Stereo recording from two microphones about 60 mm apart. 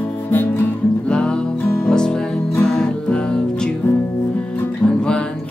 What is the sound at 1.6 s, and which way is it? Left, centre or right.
Music, left.